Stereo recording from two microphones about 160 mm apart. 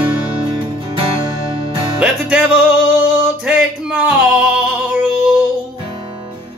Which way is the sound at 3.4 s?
5° right (ahead or behind).